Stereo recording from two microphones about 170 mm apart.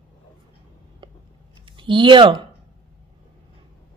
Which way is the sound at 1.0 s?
30° right (ahead or behind).